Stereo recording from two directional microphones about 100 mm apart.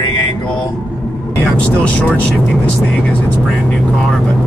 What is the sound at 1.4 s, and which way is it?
Speech, 15° left (ahead or behind).